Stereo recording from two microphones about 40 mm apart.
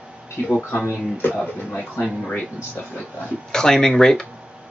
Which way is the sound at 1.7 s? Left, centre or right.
Left.